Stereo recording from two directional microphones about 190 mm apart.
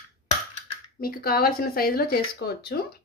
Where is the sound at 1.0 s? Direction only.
50° left (ahead or behind).